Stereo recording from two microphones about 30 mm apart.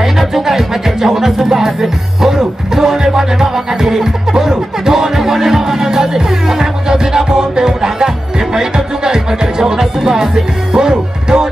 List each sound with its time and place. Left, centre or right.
0.2 s music: centre